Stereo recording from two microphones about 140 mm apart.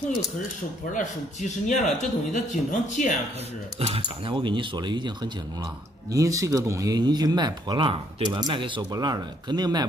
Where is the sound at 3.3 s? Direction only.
50° right (ahead or behind).